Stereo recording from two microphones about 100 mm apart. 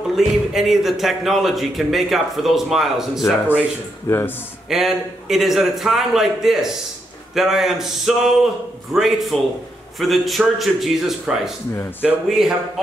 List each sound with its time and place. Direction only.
0.1 s a man's voice: 5° right (ahead or behind)
4.1 s a man's voice: 20° left (ahead or behind)
4.6 s a man's voice: 5° right (ahead or behind)